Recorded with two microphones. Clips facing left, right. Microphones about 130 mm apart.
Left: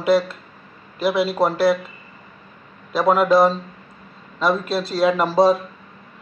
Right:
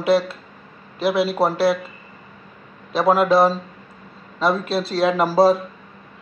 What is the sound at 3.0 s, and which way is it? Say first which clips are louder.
Speech: even; 5° right (ahead or behind).